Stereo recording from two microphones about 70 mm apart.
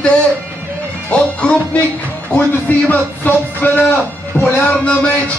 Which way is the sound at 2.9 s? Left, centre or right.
Left.